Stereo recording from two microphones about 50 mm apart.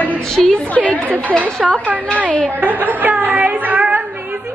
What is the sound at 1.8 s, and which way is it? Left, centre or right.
A woman's voice, right.